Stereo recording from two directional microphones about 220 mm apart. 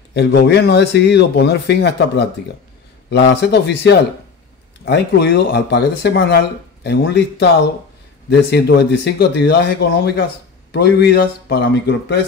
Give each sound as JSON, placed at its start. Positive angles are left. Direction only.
{"t": 0.1, "sound": "speech", "side_deg": 50}